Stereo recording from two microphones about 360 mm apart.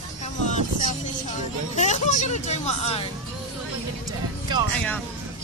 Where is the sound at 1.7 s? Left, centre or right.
Centre.